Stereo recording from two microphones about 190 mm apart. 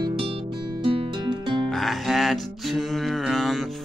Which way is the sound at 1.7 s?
Centre (ahead or behind).